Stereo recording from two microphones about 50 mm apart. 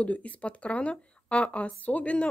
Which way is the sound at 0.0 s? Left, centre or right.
Left.